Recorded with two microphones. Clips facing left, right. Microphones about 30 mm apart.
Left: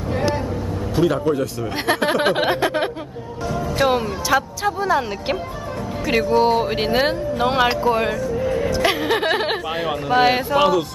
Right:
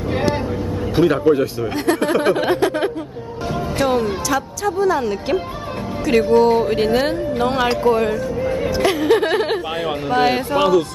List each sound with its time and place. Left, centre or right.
0.9 s speech: right
1.9 s speech: left
2.4 s a sound: centre
3.7 s speech: centre
8.5 s music: centre
8.8 s speech: centre